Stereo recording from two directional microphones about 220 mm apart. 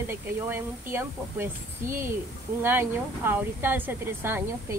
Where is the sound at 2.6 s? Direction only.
10° right (ahead or behind).